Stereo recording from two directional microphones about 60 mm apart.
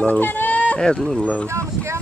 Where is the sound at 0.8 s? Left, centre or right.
Centre.